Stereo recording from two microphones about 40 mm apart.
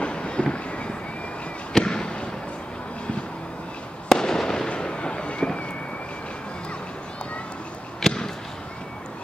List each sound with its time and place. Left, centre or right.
0.0 s train: left
1.7 s fireworks: centre
4.1 s fireworks: centre
8.0 s basketball bounce: centre